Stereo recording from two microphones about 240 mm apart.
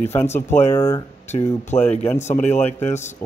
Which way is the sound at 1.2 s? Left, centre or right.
Left.